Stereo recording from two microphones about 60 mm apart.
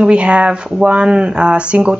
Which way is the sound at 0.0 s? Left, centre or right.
Centre.